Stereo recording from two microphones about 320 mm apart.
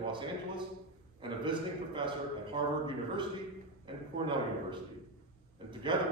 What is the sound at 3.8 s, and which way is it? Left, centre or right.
A man's voice, centre.